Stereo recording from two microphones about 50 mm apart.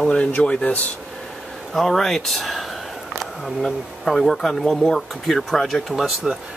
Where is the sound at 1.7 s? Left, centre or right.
Centre.